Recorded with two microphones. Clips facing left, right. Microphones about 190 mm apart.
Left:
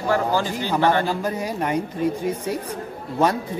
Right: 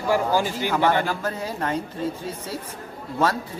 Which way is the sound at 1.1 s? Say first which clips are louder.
Left 3 dB; 15° left (ahead or behind).